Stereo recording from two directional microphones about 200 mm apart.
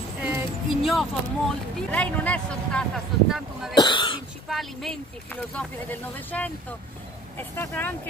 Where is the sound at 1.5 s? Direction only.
5° left (ahead or behind).